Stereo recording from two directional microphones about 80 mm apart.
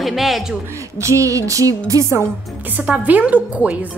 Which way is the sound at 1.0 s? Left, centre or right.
Right.